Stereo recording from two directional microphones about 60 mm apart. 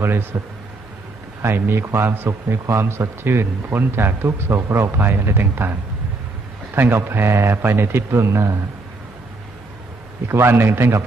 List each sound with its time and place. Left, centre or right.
0.0 s a man's voice: right
1.4 s a man's voice: right
2.6 s a man's voice: right
10.2 s a man's voice: right